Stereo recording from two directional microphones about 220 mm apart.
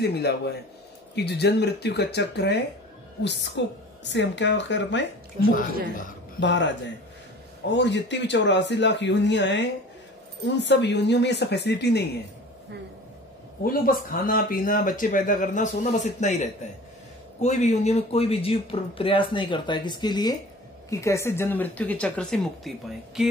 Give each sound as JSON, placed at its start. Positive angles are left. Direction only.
{"t": 0.0, "sound": "a man's voice", "side_deg": 45}
{"t": 6.4, "sound": "a man's voice", "side_deg": 55}
{"t": 13.7, "sound": "speech", "side_deg": 40}